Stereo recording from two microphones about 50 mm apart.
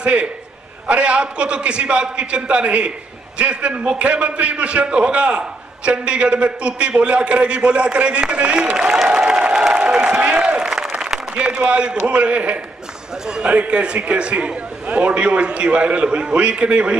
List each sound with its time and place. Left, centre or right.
0.0 s a man's voice: right
9.1 s applause: centre
12.1 s a man's voice: right